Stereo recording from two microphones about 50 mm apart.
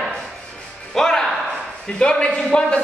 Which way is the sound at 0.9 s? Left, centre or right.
Centre.